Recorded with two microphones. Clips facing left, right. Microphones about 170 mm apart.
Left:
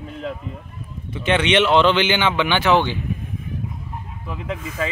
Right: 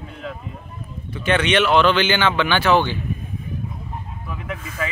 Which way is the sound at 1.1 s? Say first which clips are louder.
Left 1 dB; 20° left (ahead or behind).